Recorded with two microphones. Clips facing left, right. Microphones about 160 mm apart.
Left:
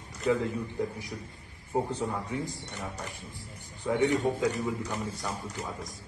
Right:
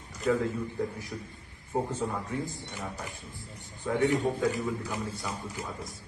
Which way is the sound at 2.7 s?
Centre (ahead or behind).